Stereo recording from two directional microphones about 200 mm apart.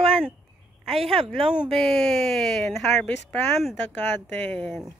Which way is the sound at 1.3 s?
5° right (ahead or behind).